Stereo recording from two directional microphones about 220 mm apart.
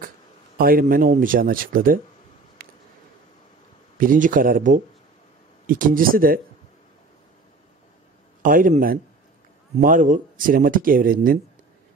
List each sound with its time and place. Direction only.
0.6 s speech: 40° right (ahead or behind)
2.6 s a sound: 45° right (ahead or behind)
4.0 s speech: 40° right (ahead or behind)
8.4 s speech: 40° right (ahead or behind)